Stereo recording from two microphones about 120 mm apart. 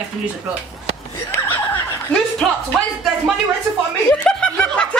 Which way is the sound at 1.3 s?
20° left (ahead or behind).